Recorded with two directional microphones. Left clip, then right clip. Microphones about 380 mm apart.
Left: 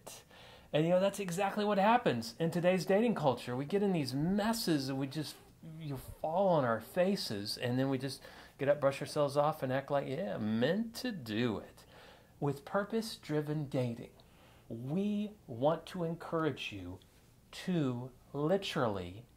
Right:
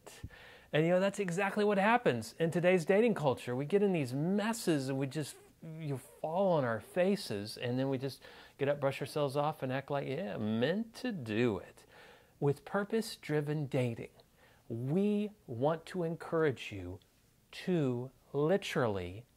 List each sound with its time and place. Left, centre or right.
0.0 s speech: right